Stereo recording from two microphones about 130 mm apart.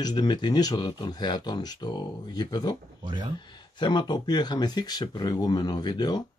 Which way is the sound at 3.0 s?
35° right (ahead or behind).